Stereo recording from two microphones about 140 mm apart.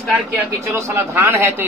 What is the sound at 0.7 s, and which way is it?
Speech, 20° right (ahead or behind).